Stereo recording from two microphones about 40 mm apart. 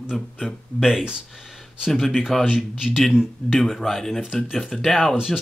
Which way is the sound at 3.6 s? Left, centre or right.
Centre.